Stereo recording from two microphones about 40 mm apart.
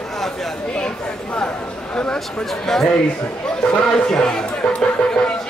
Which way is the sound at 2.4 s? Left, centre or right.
Centre.